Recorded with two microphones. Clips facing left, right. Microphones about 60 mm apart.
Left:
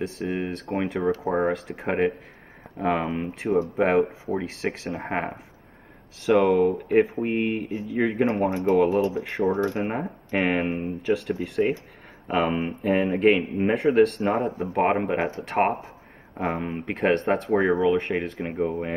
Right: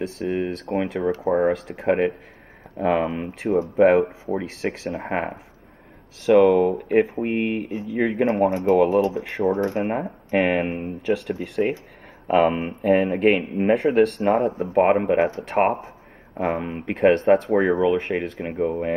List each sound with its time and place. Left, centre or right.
0.2 s speech: centre
6.3 s speech: centre
8.5 s speech: right
9.2 s speech: centre
9.5 s speech: right
9.8 s speech: centre